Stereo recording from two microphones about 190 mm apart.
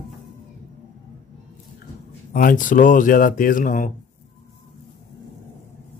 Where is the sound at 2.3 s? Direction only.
45° left (ahead or behind).